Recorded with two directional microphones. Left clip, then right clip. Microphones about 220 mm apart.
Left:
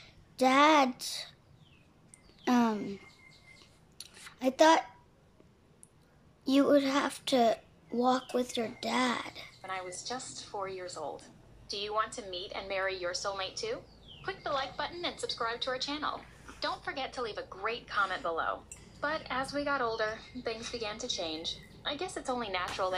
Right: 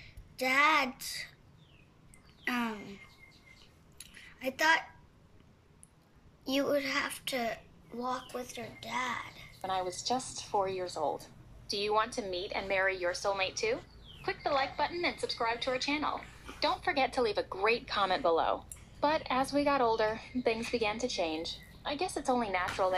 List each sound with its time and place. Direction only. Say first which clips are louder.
0.0 s a woman's voice: left 6 dB; 15° left (ahead or behind)
2.4 s a child's voice: left 5 dB; 15° left (ahead or behind)
4.0 s a sound: left 5 dB; 15° left (ahead or behind)
6.4 s a child's voice: left 5 dB; 15° left (ahead or behind)
9.6 s a woman's voice: right 6 dB; 15° right (ahead or behind)